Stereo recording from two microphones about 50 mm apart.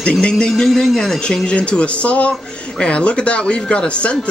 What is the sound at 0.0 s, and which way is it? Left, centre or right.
Speech, centre.